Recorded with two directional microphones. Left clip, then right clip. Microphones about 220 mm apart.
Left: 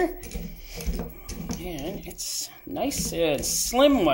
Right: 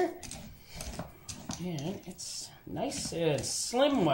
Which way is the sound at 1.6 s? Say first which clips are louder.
Left 5 dB; 45° left (ahead or behind).